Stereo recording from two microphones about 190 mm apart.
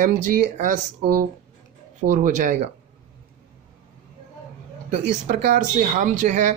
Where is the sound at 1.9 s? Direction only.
45° right (ahead or behind).